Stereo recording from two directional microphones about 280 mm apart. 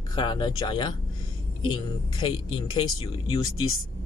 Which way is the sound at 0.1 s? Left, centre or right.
Centre.